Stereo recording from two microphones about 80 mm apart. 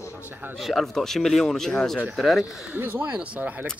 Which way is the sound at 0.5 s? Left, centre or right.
Centre.